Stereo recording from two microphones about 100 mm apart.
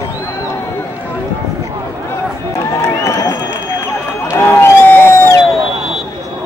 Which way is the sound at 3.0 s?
30° left (ahead or behind).